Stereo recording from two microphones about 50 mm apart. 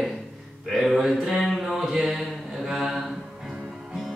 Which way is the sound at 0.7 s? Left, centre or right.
Centre.